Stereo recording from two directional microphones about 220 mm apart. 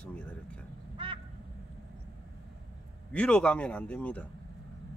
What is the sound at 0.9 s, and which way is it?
Quack, 25° right (ahead or behind).